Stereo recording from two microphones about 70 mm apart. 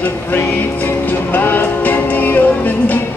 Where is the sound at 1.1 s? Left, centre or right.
Left.